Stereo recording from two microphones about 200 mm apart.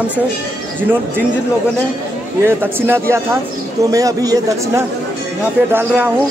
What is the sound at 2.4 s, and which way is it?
Speech, 10° right (ahead or behind).